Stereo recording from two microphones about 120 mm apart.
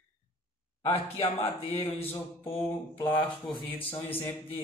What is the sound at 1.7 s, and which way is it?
Speech, 55° left (ahead or behind).